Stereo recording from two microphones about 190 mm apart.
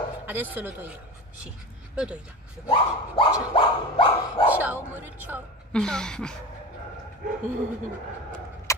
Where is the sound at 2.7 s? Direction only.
25° left (ahead or behind).